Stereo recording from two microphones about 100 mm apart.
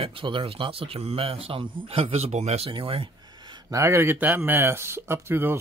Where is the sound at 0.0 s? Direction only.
60° right (ahead or behind).